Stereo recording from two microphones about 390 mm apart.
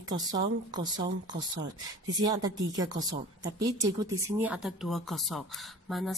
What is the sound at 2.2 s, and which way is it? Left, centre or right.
Speech, centre.